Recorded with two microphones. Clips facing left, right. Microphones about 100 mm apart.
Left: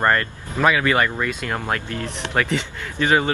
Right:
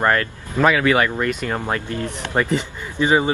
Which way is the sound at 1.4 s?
15° right (ahead or behind).